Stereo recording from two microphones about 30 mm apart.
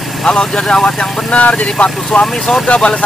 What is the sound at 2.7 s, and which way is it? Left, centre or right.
Speech, left.